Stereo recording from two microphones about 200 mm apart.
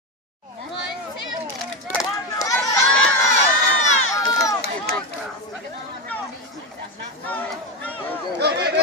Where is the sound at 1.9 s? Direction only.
15° left (ahead or behind).